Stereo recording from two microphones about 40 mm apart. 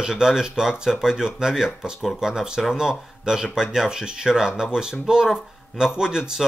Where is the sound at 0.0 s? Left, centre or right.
Centre.